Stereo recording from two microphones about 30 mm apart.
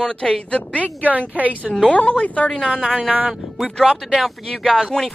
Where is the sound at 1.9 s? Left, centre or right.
Left.